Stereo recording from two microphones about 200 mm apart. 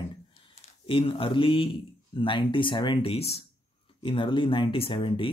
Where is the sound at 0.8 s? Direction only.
25° left (ahead or behind).